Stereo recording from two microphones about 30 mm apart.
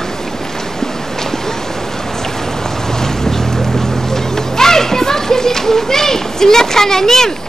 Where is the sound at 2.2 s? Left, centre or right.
Centre.